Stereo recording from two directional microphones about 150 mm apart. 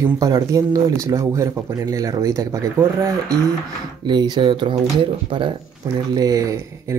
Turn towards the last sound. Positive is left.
turn(degrees=-20)  # may be behind; listen again after turning